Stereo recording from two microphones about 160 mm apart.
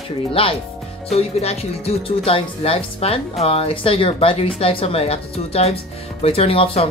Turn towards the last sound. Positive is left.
turn(degrees=35)  # may be behind; listen again after turning